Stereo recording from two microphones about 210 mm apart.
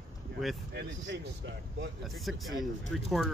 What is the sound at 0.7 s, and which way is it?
Speech, 50° right (ahead or behind).